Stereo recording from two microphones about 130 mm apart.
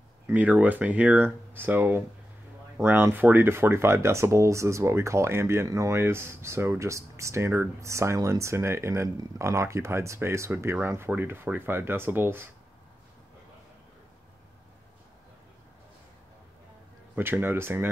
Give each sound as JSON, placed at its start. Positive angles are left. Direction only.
{"t": 0.3, "sound": "speech", "side_deg": -10}
{"t": 17.1, "sound": "speech", "side_deg": -15}